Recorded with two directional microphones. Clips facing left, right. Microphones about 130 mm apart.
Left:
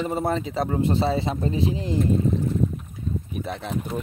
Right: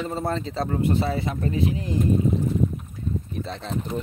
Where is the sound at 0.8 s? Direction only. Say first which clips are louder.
Left 1 dB; 25° left (ahead or behind).